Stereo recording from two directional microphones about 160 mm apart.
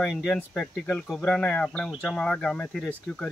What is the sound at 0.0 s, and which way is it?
Speech, centre (ahead or behind).